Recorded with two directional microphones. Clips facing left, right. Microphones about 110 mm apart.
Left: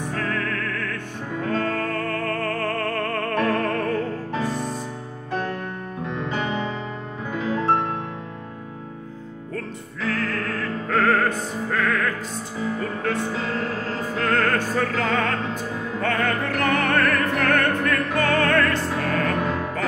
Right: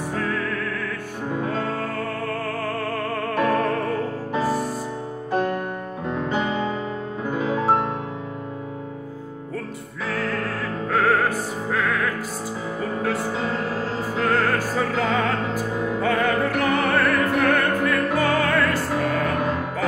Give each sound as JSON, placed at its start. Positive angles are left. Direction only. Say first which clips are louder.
{"t": 1.4, "sound": "music", "louder": "left 4 dB", "side_deg": -10}
{"t": 5.3, "sound": "music", "louder": "right 4 dB", "side_deg": -15}
{"t": 10.0, "sound": "music", "louder": "even", "side_deg": -10}
{"t": 14.1, "sound": "music", "louder": "even", "side_deg": -10}